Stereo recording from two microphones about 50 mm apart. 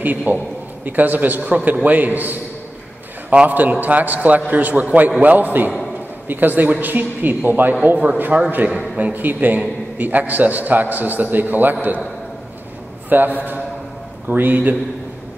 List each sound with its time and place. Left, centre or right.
0.0 s a man's voice: right
3.4 s a man's voice: right
9.1 s a man's voice: right
13.1 s a man's voice: right